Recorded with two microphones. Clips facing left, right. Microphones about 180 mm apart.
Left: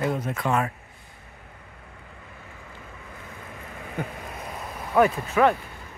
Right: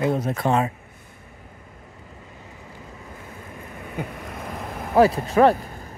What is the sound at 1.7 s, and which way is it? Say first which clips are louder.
Vehicle: right 2 dB; 40° right (ahead or behind).